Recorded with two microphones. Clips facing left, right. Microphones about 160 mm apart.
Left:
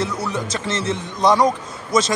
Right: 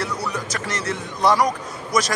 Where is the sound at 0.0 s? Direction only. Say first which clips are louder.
Left 3 dB; 25° left (ahead or behind).